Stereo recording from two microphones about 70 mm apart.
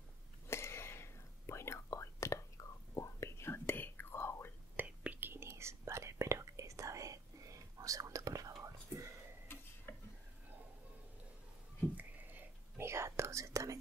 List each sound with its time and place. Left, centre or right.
0.5 s whispering: left
3.3 s whispering: left
4.7 s whispering: right
5.3 s whispering: right
9.9 s stir: left
12.0 s a sound: right
12.7 s whispering: right